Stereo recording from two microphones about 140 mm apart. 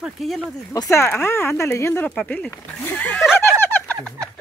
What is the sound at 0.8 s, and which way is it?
Speech, 20° left (ahead or behind).